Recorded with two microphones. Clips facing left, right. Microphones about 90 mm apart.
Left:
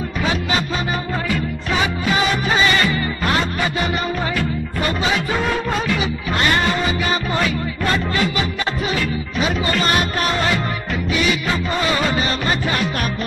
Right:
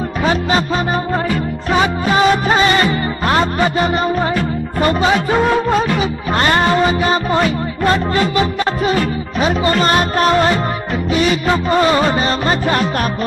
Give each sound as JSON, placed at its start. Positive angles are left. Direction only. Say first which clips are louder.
{"t": 0.2, "sound": "music", "louder": "right 5 dB", "side_deg": -40}
{"t": 1.7, "sound": "music", "louder": "right 5 dB", "side_deg": -35}
{"t": 11.7, "sound": "music", "louder": "right 7 dB", "side_deg": -35}